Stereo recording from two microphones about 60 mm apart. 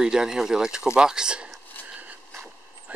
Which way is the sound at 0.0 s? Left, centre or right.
Centre.